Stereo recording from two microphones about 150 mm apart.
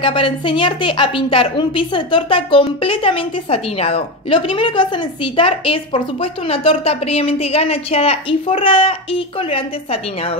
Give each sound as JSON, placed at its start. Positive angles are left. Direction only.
{"t": 0.0, "sound": "a woman's voice", "side_deg": 35}